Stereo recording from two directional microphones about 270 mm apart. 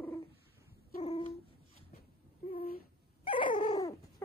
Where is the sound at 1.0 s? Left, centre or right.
Left.